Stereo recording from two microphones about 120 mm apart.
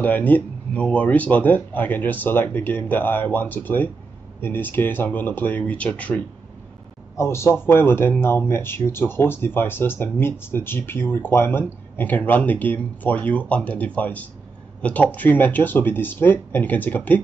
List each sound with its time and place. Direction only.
0.0 s speech: 15° left (ahead or behind)